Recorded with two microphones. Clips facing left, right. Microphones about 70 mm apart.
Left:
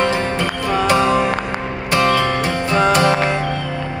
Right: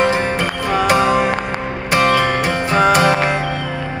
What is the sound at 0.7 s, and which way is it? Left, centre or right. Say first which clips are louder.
Music: right 1 dB; centre.